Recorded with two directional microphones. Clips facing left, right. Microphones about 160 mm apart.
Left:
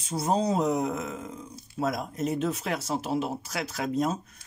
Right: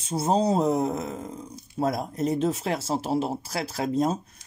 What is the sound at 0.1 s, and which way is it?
A man's voice, 25° right (ahead or behind).